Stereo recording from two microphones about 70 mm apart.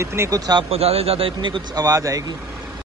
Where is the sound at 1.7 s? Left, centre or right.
Right.